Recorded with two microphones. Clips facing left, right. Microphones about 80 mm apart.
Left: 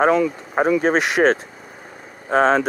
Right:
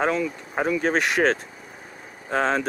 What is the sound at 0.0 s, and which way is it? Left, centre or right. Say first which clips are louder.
Speech: left 7 dB; centre.